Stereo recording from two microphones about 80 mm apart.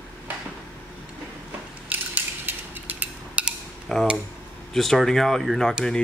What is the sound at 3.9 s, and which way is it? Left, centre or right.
Speech, centre.